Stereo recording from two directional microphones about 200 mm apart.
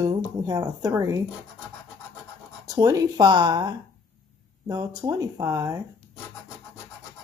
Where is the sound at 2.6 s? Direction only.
15° right (ahead or behind).